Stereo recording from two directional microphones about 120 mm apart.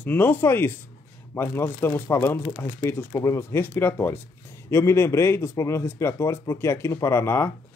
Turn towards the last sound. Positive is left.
turn(degrees=20)  # may be behind; listen again after turning